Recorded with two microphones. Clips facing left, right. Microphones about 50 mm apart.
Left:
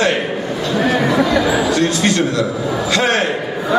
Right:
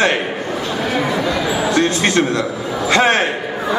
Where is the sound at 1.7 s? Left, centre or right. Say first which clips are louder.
Even; right.